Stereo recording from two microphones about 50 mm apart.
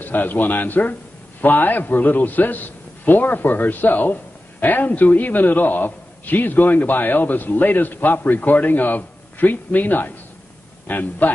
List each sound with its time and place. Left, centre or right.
0.0 s a man's voice: left